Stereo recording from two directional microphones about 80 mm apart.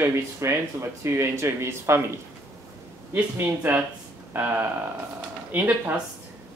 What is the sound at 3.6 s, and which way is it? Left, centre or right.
Speech, centre.